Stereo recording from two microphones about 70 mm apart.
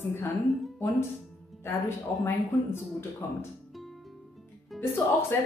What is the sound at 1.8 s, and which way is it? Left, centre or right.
Speech, left.